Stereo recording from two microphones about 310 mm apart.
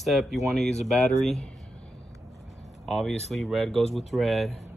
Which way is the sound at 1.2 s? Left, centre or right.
Centre.